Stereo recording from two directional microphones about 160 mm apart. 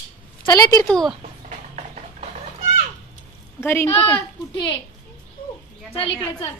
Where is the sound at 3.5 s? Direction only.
15° left (ahead or behind).